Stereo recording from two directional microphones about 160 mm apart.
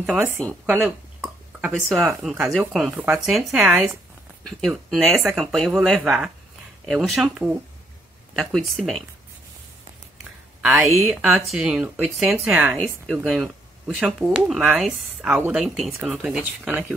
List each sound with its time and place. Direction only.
0.0 s speech: 10° right (ahead or behind)
10.6 s speech: 10° right (ahead or behind)
12.7 s speech: 5° left (ahead or behind); by 15.6 s 10° right (ahead or behind)
15.6 s speech: centre (ahead or behind)